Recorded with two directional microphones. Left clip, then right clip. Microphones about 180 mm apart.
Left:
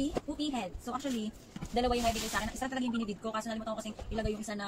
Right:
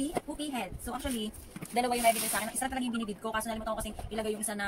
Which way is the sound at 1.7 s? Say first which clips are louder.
Right 1 dB; 25° right (ahead or behind).